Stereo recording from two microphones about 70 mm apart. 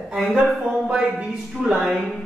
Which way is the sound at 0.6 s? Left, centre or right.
Centre.